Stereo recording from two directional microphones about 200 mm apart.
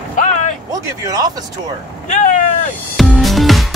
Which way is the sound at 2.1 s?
40° left (ahead or behind).